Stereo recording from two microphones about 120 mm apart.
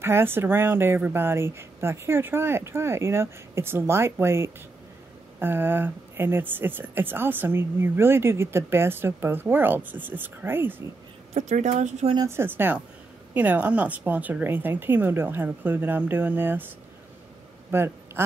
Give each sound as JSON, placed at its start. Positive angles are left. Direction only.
{"t": 0.0, "sound": "speech", "side_deg": -20}
{"t": 11.3, "sound": "a woman's voice", "side_deg": -80}
{"t": 12.3, "sound": "speech", "side_deg": -20}
{"t": 17.6, "sound": "a sound", "side_deg": -20}